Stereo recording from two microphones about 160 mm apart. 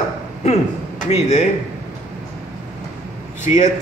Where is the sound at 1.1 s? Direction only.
45° left (ahead or behind).